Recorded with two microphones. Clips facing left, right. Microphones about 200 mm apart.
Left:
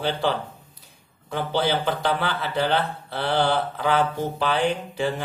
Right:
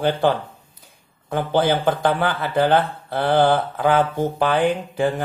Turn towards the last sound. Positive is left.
turn(degrees=-50)  # may be behind; listen again after turning